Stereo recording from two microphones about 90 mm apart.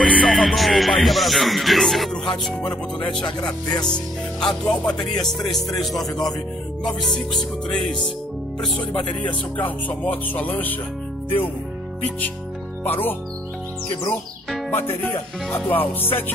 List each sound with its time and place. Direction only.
0.0 s music: 5° left (ahead or behind)
3.8 s speech: 5° left (ahead or behind)
5.2 s music: 5° left (ahead or behind)
9.2 s speech: 20° left (ahead or behind)
12.8 s speech: 20° left (ahead or behind)
14.7 s speech: 20° left (ahead or behind)